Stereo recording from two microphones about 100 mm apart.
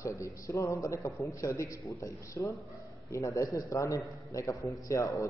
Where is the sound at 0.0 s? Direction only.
30° left (ahead or behind).